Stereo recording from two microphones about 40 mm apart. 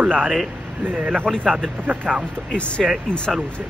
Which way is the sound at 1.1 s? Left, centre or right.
Centre.